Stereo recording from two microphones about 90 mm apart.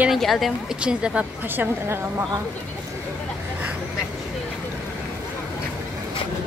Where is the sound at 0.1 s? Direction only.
Centre (ahead or behind).